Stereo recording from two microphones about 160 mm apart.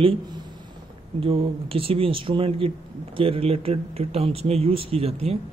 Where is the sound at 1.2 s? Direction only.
35° right (ahead or behind).